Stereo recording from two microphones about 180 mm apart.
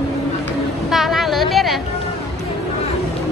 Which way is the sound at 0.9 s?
Centre (ahead or behind).